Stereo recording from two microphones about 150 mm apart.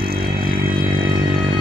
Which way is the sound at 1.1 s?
65° right (ahead or behind).